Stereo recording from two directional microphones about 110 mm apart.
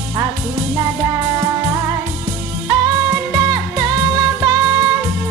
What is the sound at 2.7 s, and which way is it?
Music, 35° right (ahead or behind).